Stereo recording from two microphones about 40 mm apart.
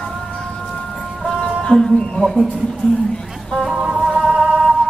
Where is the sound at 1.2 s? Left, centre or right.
Centre.